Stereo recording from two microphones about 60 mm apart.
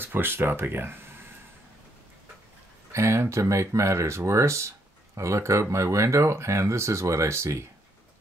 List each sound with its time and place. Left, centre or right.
0.0 s speech: right
2.9 s speech: right